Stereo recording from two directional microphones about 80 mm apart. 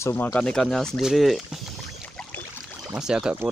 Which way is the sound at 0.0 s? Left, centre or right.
Left.